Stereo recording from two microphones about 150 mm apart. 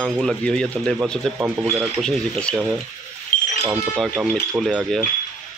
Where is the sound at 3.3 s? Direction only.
65° left (ahead or behind).